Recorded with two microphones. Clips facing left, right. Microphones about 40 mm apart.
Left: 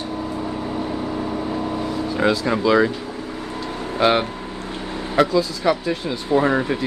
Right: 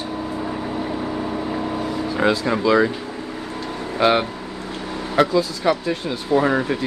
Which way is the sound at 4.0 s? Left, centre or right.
Centre.